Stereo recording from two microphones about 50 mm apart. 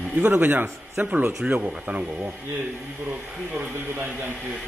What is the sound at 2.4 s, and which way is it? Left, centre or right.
Speech, right.